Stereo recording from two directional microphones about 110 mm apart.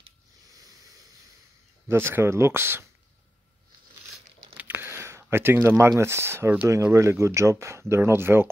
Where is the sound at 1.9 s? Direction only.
20° right (ahead or behind).